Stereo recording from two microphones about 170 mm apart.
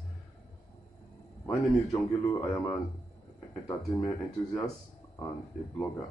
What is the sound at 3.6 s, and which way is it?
Speech, 10° left (ahead or behind).